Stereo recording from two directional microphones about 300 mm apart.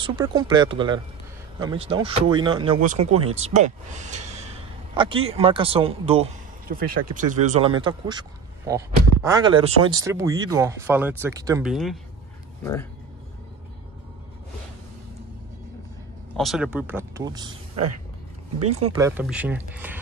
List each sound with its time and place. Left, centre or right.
0.0 s speech: centre
6.7 s speech: right; by 12.0 s centre
16.3 s speech: centre
18.6 s speech: right